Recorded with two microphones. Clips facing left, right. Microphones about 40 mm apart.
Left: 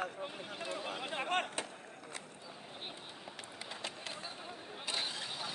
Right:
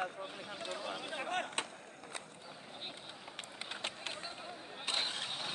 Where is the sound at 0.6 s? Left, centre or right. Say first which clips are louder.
Left 1 dB; left.